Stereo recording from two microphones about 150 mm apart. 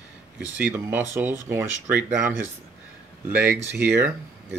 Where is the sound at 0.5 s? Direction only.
10° right (ahead or behind).